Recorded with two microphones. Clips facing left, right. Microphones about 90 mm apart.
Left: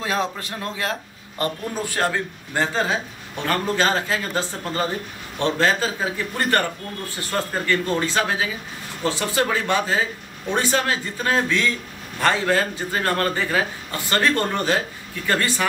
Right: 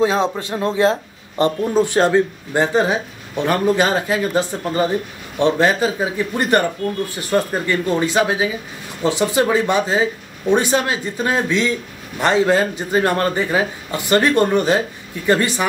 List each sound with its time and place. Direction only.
0.0 s speech: 25° right (ahead or behind)